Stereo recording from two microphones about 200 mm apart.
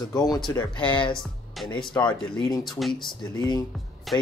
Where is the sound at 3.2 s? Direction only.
20° left (ahead or behind).